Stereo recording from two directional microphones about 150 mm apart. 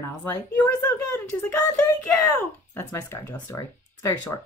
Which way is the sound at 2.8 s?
15° left (ahead or behind).